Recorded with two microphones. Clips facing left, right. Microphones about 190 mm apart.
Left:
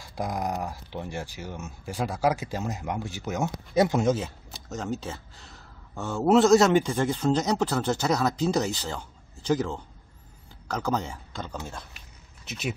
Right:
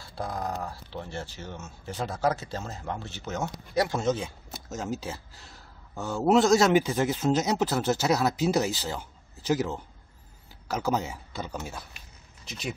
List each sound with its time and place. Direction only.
0.0 s speech: 15° left (ahead or behind)
4.1 s a man's voice: centre (ahead or behind)
12.4 s speech: 5° left (ahead or behind)